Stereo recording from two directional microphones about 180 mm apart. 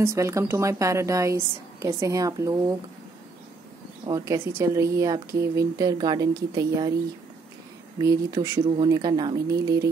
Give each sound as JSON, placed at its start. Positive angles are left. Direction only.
{"t": 0.0, "sound": "a woman's voice", "side_deg": -15}
{"t": 4.0, "sound": "a woman's voice", "side_deg": -15}
{"t": 8.0, "sound": "speech", "side_deg": -20}